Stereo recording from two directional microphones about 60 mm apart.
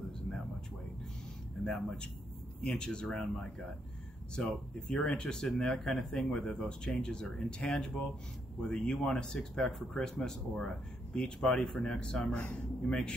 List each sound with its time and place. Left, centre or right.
2.6 s speech: centre